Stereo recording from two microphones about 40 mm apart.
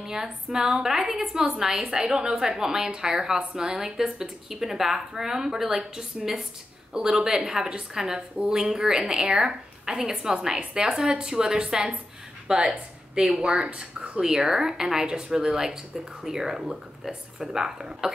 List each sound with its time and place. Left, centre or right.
0.0 s a woman's voice: centre
14.4 s speech: centre